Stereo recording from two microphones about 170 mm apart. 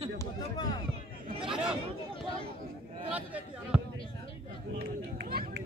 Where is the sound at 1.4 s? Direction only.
5° right (ahead or behind).